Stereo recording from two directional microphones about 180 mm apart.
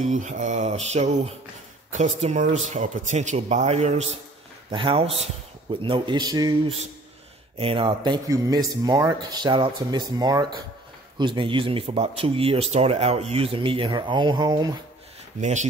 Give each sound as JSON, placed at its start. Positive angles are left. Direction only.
{"t": 0.0, "sound": "speech", "side_deg": -40}
{"t": 7.5, "sound": "speech", "side_deg": -30}
{"t": 15.4, "sound": "speech", "side_deg": -40}